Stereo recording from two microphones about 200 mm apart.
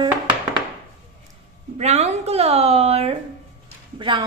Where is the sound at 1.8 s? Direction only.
35° right (ahead or behind).